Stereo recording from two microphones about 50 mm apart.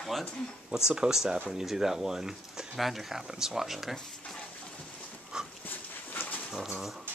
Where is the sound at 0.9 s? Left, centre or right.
Centre.